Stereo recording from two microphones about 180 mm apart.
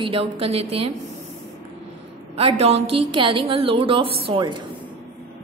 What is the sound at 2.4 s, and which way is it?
A woman's voice, 30° right (ahead or behind).